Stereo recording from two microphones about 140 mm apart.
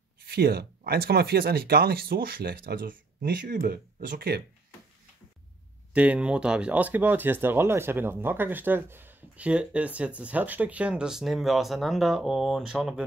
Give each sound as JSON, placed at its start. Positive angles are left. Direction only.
{"t": 0.3, "sound": "speech", "side_deg": -90}
{"t": 5.9, "sound": "speech", "side_deg": -10}